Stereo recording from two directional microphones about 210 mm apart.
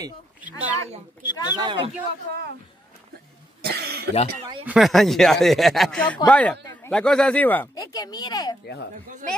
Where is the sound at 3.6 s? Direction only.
50° right (ahead or behind).